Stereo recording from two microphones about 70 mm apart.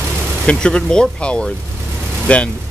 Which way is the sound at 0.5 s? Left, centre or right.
Centre.